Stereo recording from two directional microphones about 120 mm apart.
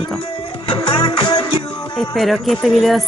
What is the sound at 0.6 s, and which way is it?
Music, 45° left (ahead or behind).